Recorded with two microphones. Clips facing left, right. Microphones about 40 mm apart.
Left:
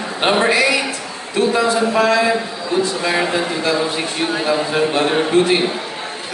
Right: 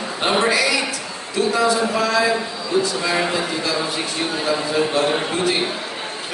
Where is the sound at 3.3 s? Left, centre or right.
Left.